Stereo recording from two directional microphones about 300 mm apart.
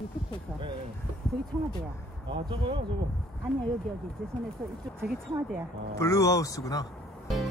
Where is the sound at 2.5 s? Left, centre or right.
Centre.